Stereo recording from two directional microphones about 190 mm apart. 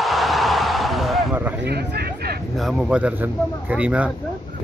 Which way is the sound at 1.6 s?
60° right (ahead or behind).